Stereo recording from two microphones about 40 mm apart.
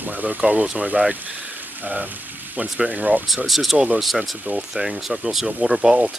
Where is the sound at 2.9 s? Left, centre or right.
Right.